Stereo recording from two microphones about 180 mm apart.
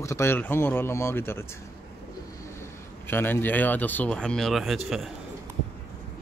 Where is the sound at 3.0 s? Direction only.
10° left (ahead or behind).